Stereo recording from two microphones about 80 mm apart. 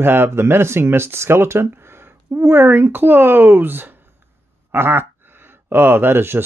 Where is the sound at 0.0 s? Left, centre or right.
Right.